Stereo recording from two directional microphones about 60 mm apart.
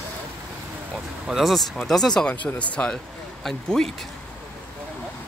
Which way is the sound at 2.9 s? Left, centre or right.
Centre.